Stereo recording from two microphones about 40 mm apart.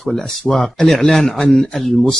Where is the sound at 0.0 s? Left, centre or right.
Centre.